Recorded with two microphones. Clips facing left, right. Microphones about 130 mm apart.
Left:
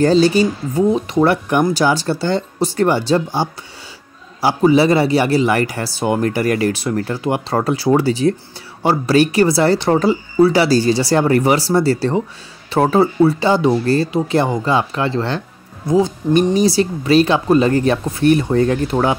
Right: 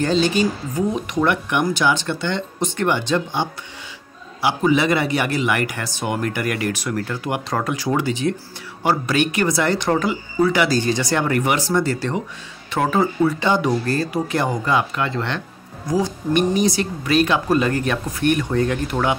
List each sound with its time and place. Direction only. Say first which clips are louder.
0.0 s speech: left 6 dB; 35° left (ahead or behind)